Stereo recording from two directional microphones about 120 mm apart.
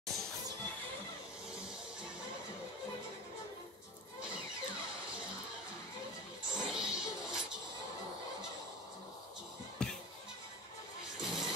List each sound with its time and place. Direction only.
6.5 s music: 5° right (ahead or behind)
9.8 s music: 5° left (ahead or behind)
11.1 s music: 5° right (ahead or behind)